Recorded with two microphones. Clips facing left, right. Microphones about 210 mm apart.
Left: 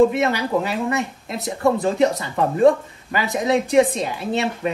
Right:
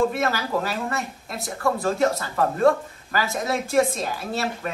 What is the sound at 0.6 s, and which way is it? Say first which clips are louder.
Speech: left 5 dB; 15° left (ahead or behind).